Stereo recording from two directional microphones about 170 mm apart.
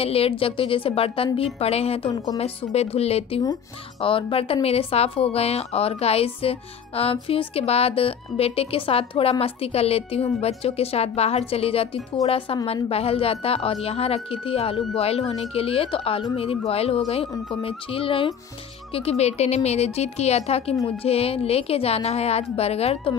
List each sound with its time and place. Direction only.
0.0 s a woman's voice: 35° left (ahead or behind)